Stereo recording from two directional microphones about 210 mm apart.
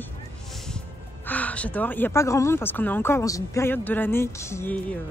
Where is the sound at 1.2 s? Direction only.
5° left (ahead or behind).